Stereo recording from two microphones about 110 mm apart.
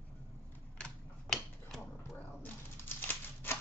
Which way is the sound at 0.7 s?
10° left (ahead or behind).